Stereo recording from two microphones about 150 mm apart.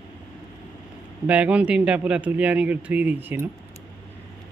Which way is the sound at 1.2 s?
10° right (ahead or behind).